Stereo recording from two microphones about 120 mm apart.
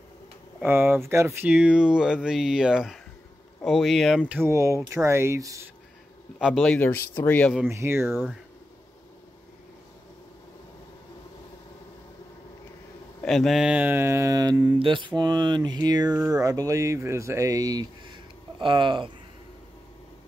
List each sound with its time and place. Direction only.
0.6 s speech: 15° right (ahead or behind)
1.5 s speech: 10° right (ahead or behind)
4.3 s speech: 20° right (ahead or behind)
6.4 s speech: centre (ahead or behind)
6.8 s speech: 15° left (ahead or behind)
7.6 s speech: 20° right (ahead or behind)
13.2 s speech: 5° left (ahead or behind); by 14.8 s 30° right (ahead or behind)
14.8 s speech: 45° right (ahead or behind)